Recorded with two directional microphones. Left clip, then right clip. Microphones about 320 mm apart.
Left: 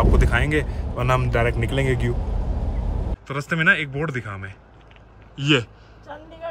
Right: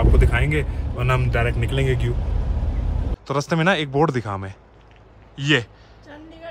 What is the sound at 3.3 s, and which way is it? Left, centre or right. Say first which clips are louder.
Speech: left 1 dB; centre.